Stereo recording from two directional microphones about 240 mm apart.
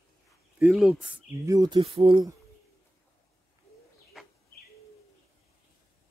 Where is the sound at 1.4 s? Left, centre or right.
Centre.